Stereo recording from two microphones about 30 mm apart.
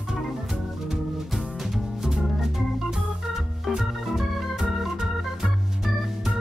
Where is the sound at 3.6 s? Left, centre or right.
Centre.